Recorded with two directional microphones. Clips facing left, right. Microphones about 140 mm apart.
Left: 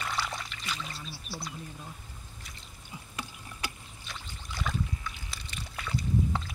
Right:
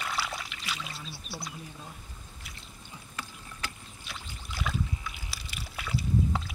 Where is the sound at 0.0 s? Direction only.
Centre (ahead or behind).